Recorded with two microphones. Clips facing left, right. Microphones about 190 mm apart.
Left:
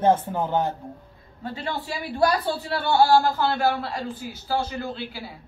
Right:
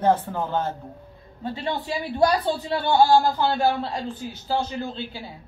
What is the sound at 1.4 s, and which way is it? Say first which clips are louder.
A man's voice: right 3 dB; 20° right (ahead or behind).